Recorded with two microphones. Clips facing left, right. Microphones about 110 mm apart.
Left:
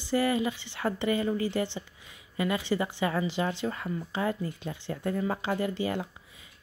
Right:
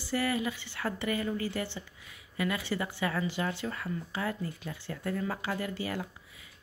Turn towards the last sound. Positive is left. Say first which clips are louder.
# left 5 dB
turn(degrees=25)  # may be behind; listen again after turning